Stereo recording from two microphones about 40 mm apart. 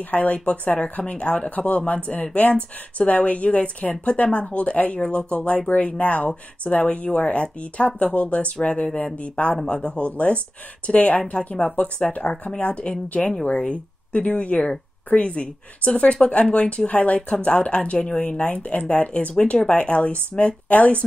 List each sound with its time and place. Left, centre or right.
0.0 s speech: left
3.1 s speech: left
13.2 s speech: centre
13.6 s speech: left
16.3 s speech: left
18.4 s speech: left